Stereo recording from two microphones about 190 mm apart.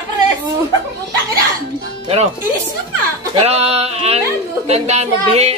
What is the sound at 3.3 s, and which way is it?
A woman's voice, 35° right (ahead or behind).